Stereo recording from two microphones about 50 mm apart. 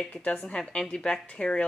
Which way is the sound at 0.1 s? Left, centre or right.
Left.